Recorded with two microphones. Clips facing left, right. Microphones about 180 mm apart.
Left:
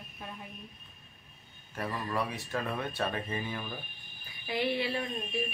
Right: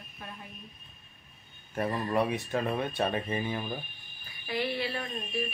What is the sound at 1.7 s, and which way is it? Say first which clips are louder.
Speech: right 5 dB; 25° right (ahead or behind).